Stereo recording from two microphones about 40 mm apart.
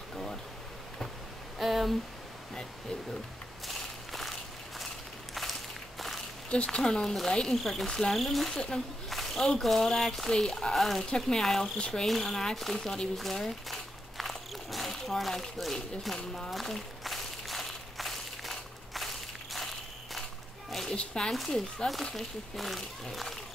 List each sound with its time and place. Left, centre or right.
0.1 s pink noise: centre
1.6 s speech: centre
3.6 s walk: centre
6.5 s speech: left; by 8.5 s centre
8.5 s speech: centre
13.2 s a sound: centre
20.9 s speech: left
22.1 s speech: centre